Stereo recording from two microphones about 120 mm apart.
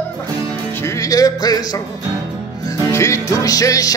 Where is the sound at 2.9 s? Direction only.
25° left (ahead or behind).